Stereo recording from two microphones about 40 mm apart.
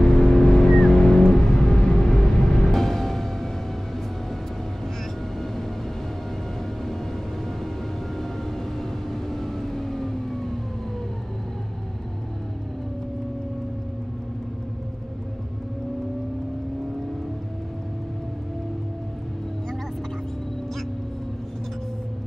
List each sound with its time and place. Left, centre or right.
0.0 s vehicle: centre
1.7 s music: centre
9.1 s vehicle: centre